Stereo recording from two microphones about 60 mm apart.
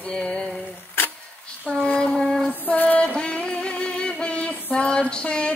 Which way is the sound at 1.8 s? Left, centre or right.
Centre.